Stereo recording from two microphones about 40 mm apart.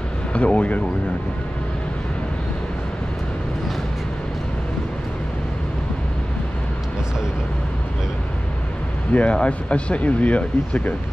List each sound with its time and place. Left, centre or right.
0.3 s speech: left
9.1 s speech: left